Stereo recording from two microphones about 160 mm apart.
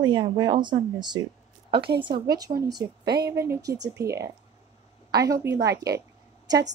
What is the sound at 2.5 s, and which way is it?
Speech, 45° right (ahead or behind).